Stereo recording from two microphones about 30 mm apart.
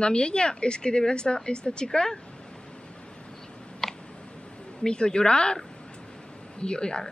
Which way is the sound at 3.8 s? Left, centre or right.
Centre.